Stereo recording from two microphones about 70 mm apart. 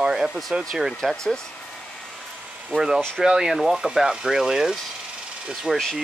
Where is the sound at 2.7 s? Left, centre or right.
Centre.